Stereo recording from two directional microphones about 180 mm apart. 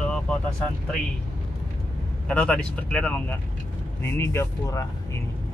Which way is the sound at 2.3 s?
5° left (ahead or behind).